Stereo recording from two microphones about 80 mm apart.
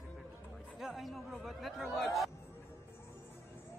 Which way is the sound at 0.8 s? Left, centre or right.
Centre.